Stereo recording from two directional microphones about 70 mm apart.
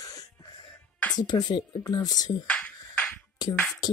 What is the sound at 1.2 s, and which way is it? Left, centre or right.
Speech, left.